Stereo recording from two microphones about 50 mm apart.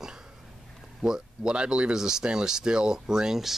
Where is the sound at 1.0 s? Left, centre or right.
Centre.